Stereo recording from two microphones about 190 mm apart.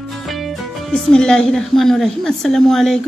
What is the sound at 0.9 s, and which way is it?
A woman's voice, 5° left (ahead or behind).